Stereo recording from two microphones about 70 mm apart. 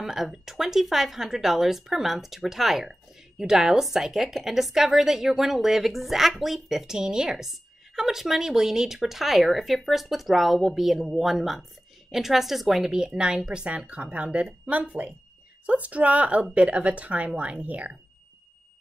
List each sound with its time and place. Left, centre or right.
0.0 s a woman's voice: centre